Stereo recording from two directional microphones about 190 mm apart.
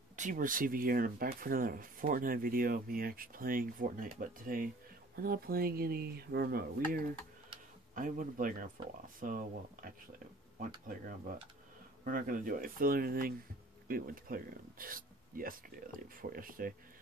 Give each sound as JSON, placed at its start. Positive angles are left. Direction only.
{"t": 0.1, "sound": "speech", "side_deg": -45}
{"t": 7.9, "sound": "speech", "side_deg": -45}